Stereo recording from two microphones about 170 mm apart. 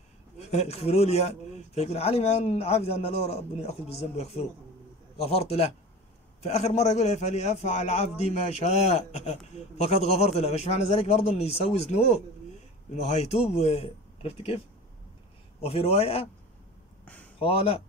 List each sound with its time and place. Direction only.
0.4 s speech: 40° left (ahead or behind)
15.6 s speech: 35° left (ahead or behind)
17.0 s a sound: 10° left (ahead or behind)
17.4 s speech: 35° left (ahead or behind)